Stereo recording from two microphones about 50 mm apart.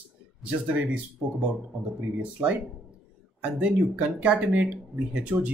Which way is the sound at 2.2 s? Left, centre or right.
Right.